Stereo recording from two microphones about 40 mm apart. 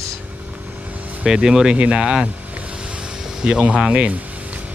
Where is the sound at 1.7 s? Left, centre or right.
Right.